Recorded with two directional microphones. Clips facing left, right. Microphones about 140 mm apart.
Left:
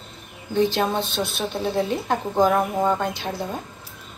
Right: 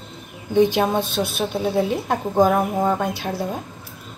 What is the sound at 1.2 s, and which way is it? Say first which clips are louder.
Speech: right 3 dB; 5° right (ahead or behind).